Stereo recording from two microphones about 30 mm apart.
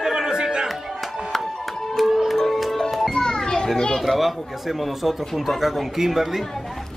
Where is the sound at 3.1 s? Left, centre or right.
Left.